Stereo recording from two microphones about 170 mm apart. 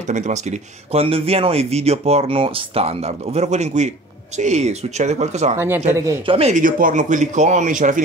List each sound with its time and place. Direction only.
0.0 s speech: 45° right (ahead or behind)
5.6 s speech: 15° right (ahead or behind)
6.2 s speech: 35° right (ahead or behind)
6.5 s speech: 50° right (ahead or behind)